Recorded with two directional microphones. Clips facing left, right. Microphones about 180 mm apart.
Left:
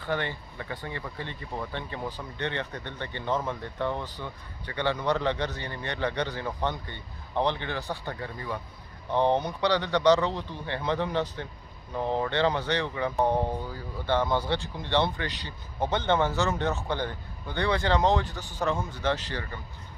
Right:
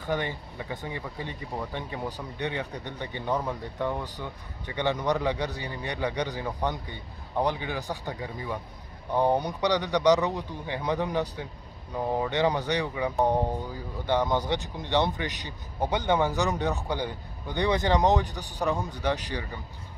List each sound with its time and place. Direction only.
0.0 s speech: 15° right (ahead or behind)